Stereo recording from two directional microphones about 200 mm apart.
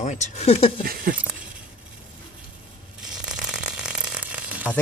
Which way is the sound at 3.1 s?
5° right (ahead or behind).